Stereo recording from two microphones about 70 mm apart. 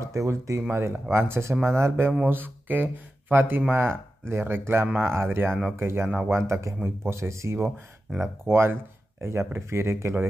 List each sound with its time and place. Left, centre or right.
0.0 s speech: right